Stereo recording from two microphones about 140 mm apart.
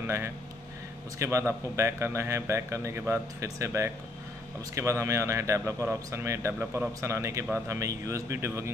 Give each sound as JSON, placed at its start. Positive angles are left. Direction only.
{"t": 0.0, "sound": "a man's voice", "side_deg": -15}